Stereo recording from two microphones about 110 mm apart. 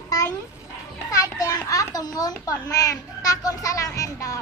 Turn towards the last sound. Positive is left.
turn(degrees=30)  # may be behind; listen again after turning